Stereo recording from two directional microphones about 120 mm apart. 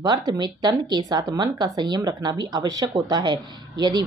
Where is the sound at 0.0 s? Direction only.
35° right (ahead or behind).